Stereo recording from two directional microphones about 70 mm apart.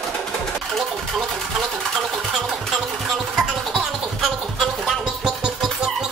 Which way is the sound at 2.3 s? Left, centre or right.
Centre.